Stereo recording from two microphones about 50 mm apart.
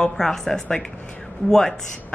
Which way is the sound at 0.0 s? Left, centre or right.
Centre.